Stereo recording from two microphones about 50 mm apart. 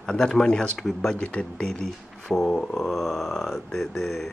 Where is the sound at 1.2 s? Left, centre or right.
Left.